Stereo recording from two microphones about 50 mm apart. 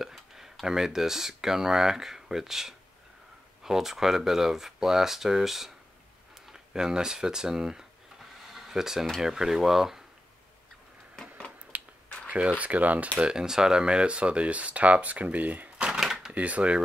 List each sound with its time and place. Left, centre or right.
0.0 s speech: centre
8.5 s a sound: centre
9.2 s speech: centre
11.7 s finger snapping: right
12.3 s speech: right
13.2 s speech: centre; by 15.7 s right
15.8 s typewriter: centre
16.3 s speech: right